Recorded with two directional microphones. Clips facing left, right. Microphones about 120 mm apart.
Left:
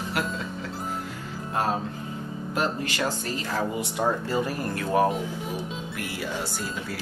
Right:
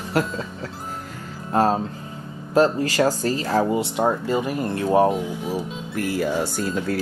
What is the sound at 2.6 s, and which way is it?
Speech, 40° right (ahead or behind).